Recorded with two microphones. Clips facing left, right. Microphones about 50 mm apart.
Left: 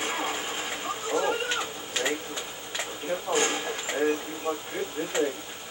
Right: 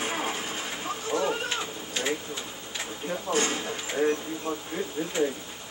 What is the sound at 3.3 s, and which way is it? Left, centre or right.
Speech, centre.